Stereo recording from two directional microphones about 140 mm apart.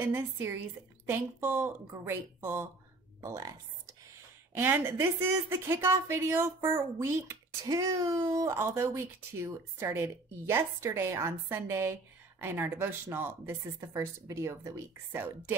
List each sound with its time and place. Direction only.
0.0 s a woman's voice: 15° right (ahead or behind)